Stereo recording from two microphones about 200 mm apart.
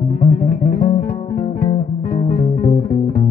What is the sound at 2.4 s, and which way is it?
Music, 35° left (ahead or behind).